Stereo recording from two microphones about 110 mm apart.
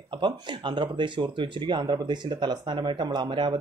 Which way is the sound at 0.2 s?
45° right (ahead or behind).